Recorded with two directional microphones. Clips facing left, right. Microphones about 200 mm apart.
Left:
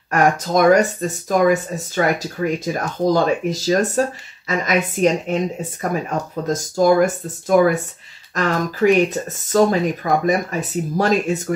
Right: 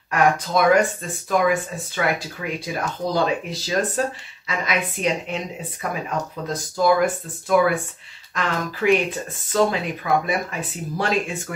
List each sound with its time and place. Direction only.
0.1 s speech: 45° left (ahead or behind)